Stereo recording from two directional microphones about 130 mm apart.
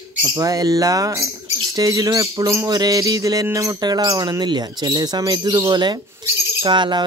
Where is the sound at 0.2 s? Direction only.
25° right (ahead or behind).